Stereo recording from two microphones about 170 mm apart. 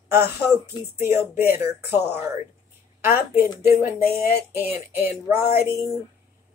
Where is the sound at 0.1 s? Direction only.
15° right (ahead or behind).